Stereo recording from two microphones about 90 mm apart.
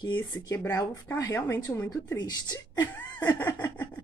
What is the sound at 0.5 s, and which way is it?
Speech, 35° left (ahead or behind).